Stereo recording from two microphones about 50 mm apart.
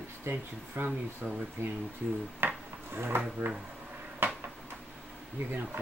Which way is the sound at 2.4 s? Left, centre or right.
Right.